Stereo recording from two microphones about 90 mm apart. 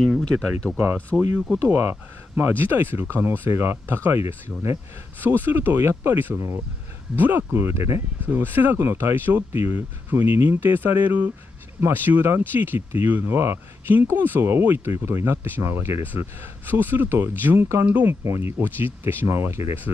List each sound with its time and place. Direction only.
0.0 s speech: 5° left (ahead or behind)
1.1 s speech: centre (ahead or behind)
1.7 s speech: 20° right (ahead or behind)
18.2 s speech: 30° right (ahead or behind)